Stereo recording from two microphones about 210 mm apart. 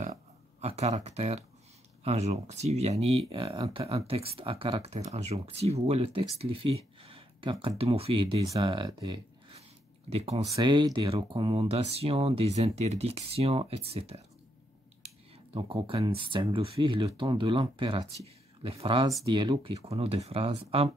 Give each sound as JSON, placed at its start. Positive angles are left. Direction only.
{"t": 0.6, "sound": "speech", "side_deg": -30}
{"t": 10.4, "sound": "speech", "side_deg": -20}
{"t": 15.5, "sound": "speech", "side_deg": -25}